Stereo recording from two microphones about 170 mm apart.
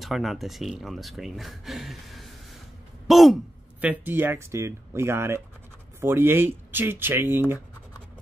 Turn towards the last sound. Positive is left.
turn(degrees=-10)  # may be behind; listen again after turning